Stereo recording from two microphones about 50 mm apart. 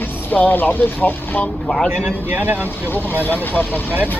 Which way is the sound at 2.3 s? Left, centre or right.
Right.